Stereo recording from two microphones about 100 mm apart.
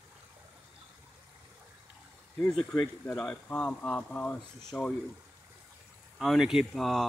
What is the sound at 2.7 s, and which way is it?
Speech, 15° left (ahead or behind).